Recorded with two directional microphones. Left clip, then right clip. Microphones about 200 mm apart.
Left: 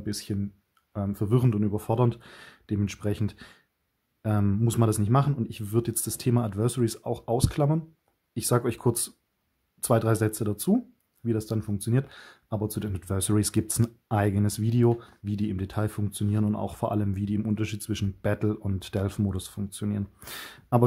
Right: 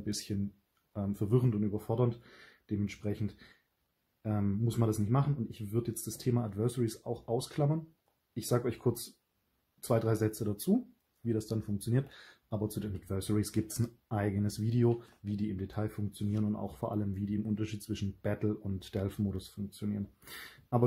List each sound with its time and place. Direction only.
0.0 s speech: 25° left (ahead or behind)